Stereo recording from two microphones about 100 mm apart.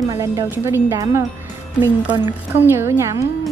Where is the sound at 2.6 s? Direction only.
20° right (ahead or behind).